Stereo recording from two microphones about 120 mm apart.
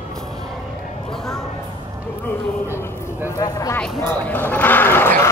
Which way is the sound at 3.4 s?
30° left (ahead or behind).